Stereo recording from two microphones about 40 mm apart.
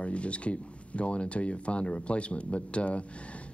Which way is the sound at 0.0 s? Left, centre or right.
Left.